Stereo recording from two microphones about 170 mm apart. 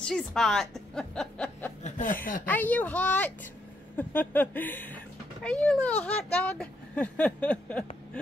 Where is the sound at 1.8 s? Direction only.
50° left (ahead or behind).